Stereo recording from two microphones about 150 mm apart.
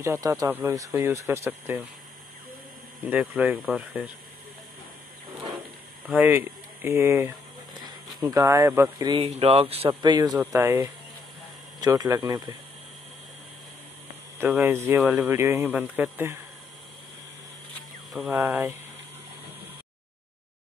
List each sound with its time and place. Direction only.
0.0 s speech: 20° right (ahead or behind)
3.0 s speech: 10° right (ahead or behind)
6.0 s speech: 10° right (ahead or behind)
9.2 s speech: 40° right (ahead or behind); by 12.5 s 25° right (ahead or behind)
14.6 s speech: 15° right (ahead or behind)
15.0 s speech: 5° right (ahead or behind)
15.2 s speech: 15° right (ahead or behind)
18.3 s speech: 15° right (ahead or behind)